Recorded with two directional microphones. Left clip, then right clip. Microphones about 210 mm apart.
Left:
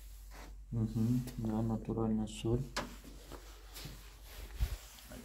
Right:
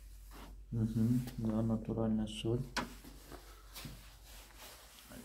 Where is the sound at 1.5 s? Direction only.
Centre (ahead or behind).